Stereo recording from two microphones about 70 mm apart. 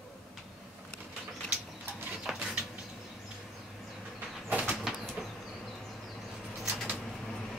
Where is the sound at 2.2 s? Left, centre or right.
Centre.